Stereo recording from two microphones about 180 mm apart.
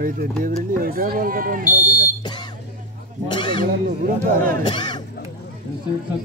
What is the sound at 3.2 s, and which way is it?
Speech, 25° left (ahead or behind).